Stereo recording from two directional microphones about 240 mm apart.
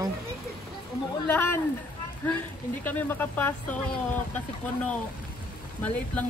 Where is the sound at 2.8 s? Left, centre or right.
Centre.